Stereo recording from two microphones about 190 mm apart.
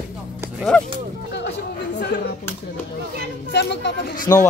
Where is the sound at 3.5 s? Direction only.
65° left (ahead or behind).